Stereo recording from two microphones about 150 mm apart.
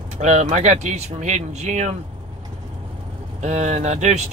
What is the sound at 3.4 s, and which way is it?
Speech, 50° right (ahead or behind).